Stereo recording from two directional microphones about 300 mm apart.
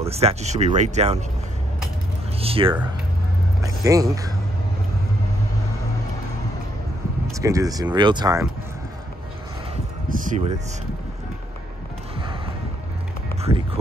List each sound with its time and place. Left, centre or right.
0.1 s speech: right
2.4 s a sound: centre
3.6 s speech: centre
7.3 s speech: centre
10.0 s a sound: right
13.4 s run: centre